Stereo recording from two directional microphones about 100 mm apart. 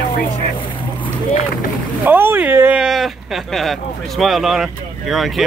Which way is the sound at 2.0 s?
20° right (ahead or behind).